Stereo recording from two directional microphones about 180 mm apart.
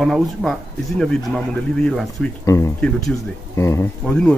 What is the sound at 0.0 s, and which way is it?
A man's voice, centre (ahead or behind).